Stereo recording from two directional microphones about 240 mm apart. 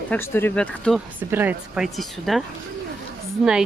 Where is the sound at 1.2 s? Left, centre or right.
Centre.